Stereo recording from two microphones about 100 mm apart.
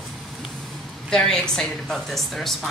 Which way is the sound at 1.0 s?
5° left (ahead or behind).